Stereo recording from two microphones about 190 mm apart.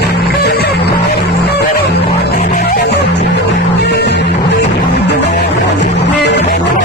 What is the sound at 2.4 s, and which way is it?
Music, 40° left (ahead or behind).